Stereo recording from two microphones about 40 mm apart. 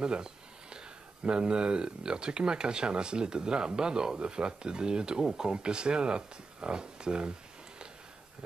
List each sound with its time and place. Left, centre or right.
0.0 s speech: right